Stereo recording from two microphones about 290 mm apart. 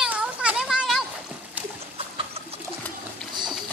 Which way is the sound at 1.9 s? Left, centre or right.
Centre.